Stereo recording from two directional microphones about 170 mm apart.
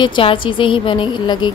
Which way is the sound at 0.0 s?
30° left (ahead or behind).